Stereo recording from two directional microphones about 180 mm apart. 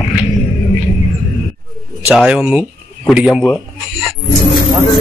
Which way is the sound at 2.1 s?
5° right (ahead or behind).